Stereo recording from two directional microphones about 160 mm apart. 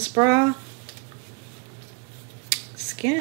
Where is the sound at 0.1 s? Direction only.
20° right (ahead or behind).